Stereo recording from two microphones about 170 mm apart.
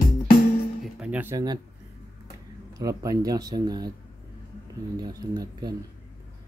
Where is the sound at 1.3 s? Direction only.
25° right (ahead or behind).